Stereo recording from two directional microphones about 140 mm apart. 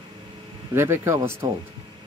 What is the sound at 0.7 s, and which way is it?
Speech, 20° right (ahead or behind).